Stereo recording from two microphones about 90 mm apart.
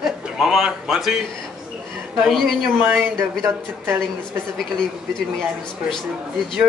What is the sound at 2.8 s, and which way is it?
Speech, 20° right (ahead or behind).